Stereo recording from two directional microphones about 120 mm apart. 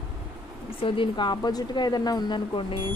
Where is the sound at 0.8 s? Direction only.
45° left (ahead or behind).